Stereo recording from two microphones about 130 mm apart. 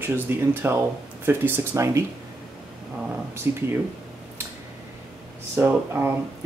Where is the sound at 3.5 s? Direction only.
20° right (ahead or behind).